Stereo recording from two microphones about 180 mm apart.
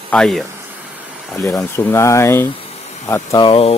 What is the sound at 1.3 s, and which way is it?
Speech, 15° left (ahead or behind).